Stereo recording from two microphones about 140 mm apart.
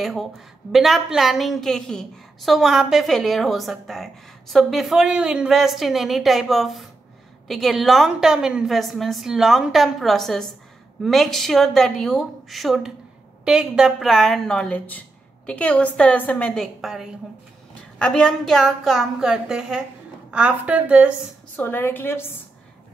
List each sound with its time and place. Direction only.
0.0 s a woman's voice: centre (ahead or behind)
21.5 s a woman's voice: 15° left (ahead or behind)